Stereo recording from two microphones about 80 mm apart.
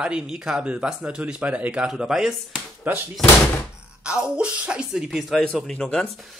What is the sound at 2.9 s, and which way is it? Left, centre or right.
Speech, right.